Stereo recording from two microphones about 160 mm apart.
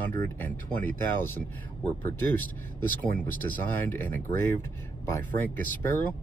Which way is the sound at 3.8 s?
10° left (ahead or behind).